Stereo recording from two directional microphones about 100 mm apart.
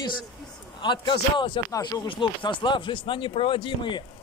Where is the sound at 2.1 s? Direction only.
55° left (ahead or behind).